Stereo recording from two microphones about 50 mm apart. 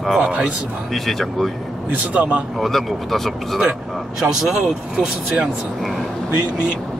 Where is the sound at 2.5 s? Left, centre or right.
Centre.